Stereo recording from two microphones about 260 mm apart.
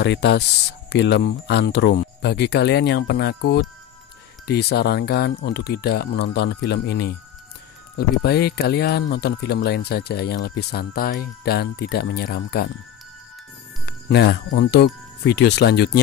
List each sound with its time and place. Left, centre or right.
0.0 s speech: left
8.2 s speech: left
13.8 s speech: left